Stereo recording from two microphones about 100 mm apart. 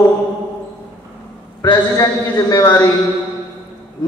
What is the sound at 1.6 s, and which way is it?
A man's voice, 35° left (ahead or behind).